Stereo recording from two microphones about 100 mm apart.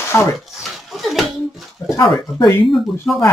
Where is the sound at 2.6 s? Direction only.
Centre (ahead or behind).